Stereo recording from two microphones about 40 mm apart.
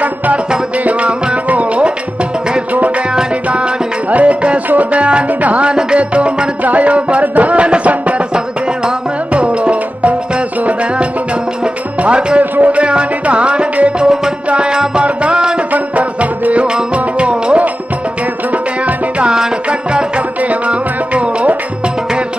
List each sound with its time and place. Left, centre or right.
0.8 s music: right
4.1 s music: right
12.0 s music: right
12.5 s music: right
12.8 s music: right
15.7 s music: right
18.9 s music: right